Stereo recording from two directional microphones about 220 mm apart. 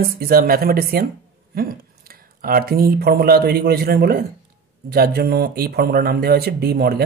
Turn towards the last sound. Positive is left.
turn(degrees=-45)  # may be behind; listen again after turning